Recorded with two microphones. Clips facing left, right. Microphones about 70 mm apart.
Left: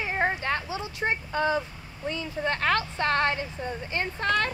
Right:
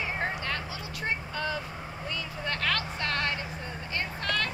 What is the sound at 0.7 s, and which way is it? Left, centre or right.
Speech, left.